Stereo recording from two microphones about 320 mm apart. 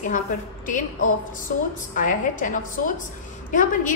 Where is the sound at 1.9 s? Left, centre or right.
Left.